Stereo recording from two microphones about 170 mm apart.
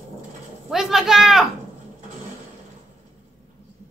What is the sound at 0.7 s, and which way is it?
Speech, centre (ahead or behind).